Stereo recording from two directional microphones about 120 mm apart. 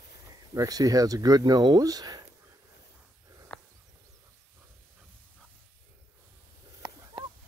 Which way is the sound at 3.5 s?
10° left (ahead or behind).